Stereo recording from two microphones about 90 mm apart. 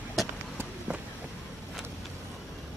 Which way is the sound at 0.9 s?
15° right (ahead or behind).